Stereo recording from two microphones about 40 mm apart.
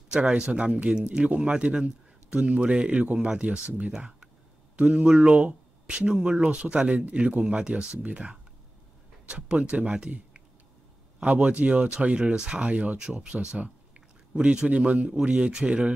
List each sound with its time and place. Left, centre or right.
0.5 s speech: right
3.9 s speech: centre
5.3 s speech: right
11.1 s speech: right
12.9 s speech: right